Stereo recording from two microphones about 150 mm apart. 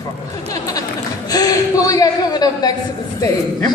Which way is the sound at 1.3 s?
25° left (ahead or behind).